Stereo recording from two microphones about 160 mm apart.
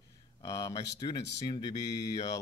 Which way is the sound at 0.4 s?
20° left (ahead or behind).